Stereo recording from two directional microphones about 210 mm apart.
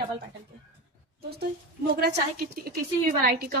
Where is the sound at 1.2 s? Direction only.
50° right (ahead or behind).